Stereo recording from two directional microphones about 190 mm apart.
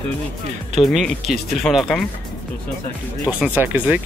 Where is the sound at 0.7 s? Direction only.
Centre (ahead or behind).